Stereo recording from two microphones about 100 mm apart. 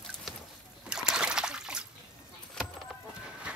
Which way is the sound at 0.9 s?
5° right (ahead or behind).